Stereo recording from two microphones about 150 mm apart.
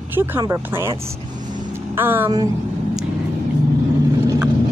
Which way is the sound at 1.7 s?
15° right (ahead or behind).